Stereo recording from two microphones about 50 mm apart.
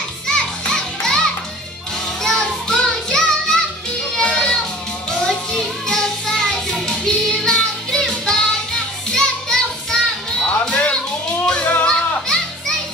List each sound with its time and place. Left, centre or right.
0.3 s children playing: centre
2.2 s music: centre
4.2 s children playing: centre
5.1 s music: centre
10.7 s music: left
11.6 s music: left
11.9 s children playing: centre